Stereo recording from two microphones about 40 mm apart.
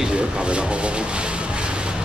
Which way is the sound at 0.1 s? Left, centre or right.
Right.